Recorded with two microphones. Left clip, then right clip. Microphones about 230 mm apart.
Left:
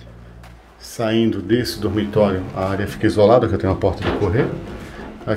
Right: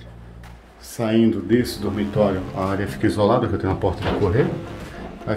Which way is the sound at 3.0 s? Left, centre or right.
Centre.